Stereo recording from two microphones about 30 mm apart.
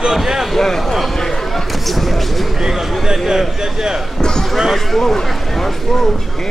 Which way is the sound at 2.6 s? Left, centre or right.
Centre.